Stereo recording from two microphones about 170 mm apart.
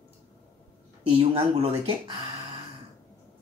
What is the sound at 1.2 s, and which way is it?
Speech, 35° right (ahead or behind).